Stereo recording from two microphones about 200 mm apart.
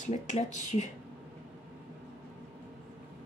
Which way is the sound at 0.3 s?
35° left (ahead or behind).